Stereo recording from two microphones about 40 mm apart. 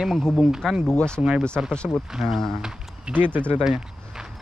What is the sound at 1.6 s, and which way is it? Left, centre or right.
Speech, right.